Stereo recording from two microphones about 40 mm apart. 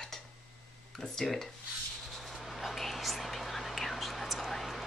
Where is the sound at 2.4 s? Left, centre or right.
Centre.